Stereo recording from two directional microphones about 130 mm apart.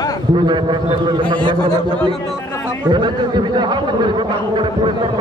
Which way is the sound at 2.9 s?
35° right (ahead or behind).